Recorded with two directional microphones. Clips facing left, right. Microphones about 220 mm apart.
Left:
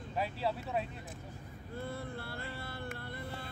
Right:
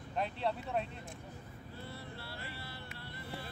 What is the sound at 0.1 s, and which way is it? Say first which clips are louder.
Speech: even; 5° left (ahead or behind).